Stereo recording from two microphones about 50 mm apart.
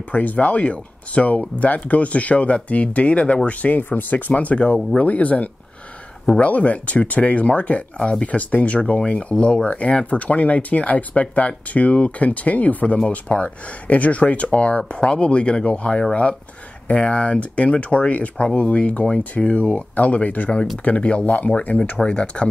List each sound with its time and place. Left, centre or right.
0.1 s speech: left